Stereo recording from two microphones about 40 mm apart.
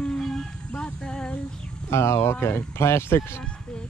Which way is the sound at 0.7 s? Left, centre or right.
Left.